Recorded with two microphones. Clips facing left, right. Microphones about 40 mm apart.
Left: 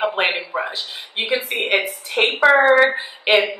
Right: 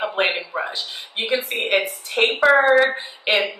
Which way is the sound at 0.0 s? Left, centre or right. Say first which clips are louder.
Left 2 dB; centre.